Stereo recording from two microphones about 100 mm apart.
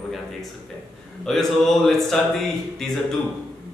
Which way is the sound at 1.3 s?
5° left (ahead or behind).